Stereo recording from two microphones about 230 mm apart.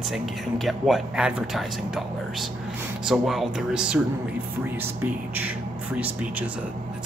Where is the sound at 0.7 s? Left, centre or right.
Centre.